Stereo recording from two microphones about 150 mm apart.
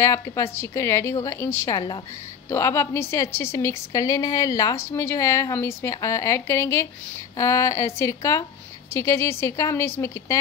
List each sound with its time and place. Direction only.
0.0 s a woman's voice: 20° left (ahead or behind)